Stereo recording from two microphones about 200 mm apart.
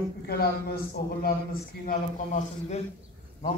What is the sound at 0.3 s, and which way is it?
A man's voice, 50° left (ahead or behind).